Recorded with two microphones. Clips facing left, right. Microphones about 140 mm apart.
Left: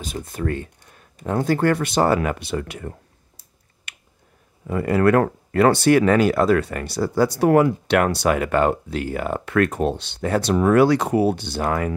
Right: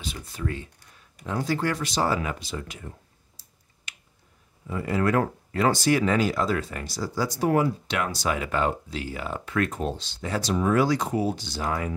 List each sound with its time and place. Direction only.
0.0 s speech: 50° left (ahead or behind)
3.9 s a sound: 60° left (ahead or behind)
4.6 s speech: 60° left (ahead or behind)